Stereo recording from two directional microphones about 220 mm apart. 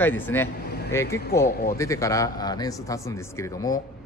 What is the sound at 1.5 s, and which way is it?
Speech, 40° left (ahead or behind).